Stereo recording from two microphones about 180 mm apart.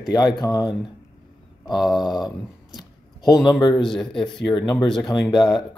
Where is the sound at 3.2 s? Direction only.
20° left (ahead or behind).